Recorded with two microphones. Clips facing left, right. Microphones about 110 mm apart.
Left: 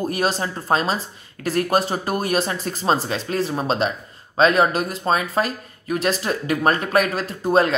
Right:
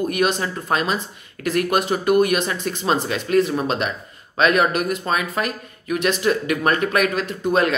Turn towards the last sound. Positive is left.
turn(degrees=35)  # may be behind; listen again after turning